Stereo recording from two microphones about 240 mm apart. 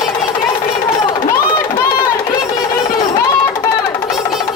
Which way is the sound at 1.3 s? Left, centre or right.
Centre.